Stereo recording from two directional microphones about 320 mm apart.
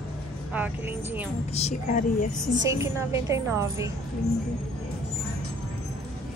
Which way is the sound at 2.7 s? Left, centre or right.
Centre.